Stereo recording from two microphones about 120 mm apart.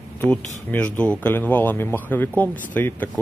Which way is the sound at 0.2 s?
10° left (ahead or behind).